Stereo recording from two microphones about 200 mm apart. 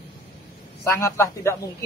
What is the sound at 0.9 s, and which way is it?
Speech, 15° left (ahead or behind).